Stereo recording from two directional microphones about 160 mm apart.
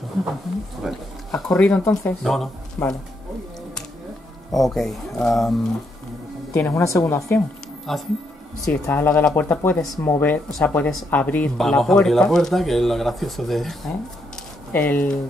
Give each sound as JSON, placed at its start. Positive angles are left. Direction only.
{"t": 0.8, "sound": "speech", "side_deg": 0}
{"t": 4.5, "sound": "speech", "side_deg": 0}
{"t": 6.5, "sound": "speech", "side_deg": 15}
{"t": 7.9, "sound": "speech", "side_deg": 0}
{"t": 8.8, "sound": "speech", "side_deg": 15}